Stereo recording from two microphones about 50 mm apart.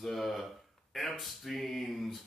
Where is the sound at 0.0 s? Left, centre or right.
Centre.